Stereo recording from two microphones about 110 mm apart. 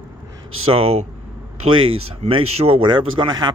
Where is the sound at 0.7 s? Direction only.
65° right (ahead or behind).